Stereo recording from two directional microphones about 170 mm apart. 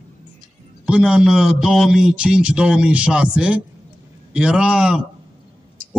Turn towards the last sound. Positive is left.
turn(degrees=-5)  # may be behind; listen again after turning